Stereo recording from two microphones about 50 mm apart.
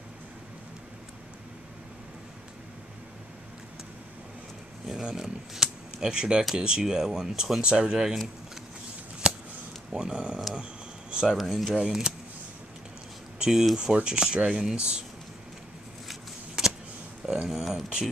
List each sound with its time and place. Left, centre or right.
4.8 s speech: centre
9.2 s a sound: centre
9.9 s speech: centre
10.5 s a sound: centre
11.3 s speech: centre
13.4 s speech: centre
16.1 s shuffling cards: centre
17.3 s speech: centre